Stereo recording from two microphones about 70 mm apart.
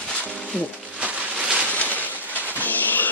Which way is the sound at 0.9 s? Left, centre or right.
Centre.